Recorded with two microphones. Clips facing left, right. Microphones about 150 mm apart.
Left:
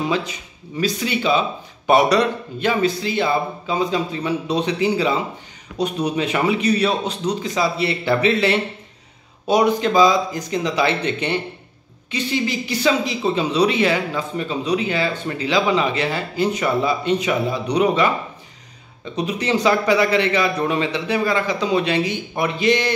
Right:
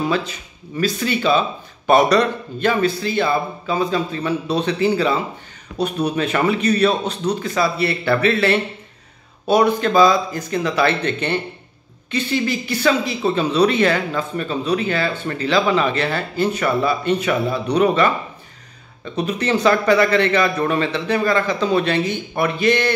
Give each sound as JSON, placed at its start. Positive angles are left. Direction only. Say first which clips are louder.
{"t": 0.1, "sound": "speech", "louder": "right 1 dB", "side_deg": 15}